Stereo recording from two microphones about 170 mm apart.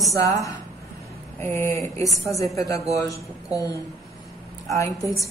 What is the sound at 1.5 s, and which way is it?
Speech, 15° left (ahead or behind).